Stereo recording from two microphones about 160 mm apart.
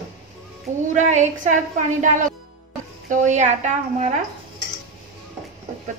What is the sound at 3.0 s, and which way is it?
A woman's voice, 50° right (ahead or behind).